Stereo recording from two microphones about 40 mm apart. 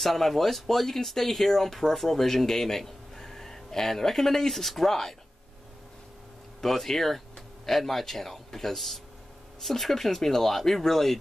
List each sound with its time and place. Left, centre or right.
0.0 s speech: centre
6.6 s a man's voice: centre